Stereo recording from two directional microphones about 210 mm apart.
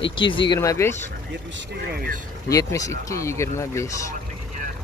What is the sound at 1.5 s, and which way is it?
Speech, 50° right (ahead or behind).